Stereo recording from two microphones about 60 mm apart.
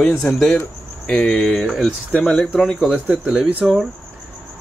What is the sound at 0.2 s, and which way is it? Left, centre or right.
Speech, centre.